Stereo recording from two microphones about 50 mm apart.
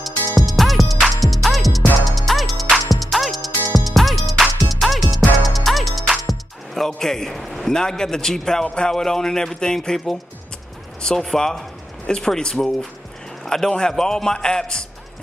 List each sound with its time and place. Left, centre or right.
0.4 s music: centre
7.0 s speech: centre
11.1 s a man's voice: centre